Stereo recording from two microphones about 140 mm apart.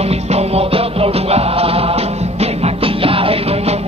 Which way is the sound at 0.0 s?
50° right (ahead or behind).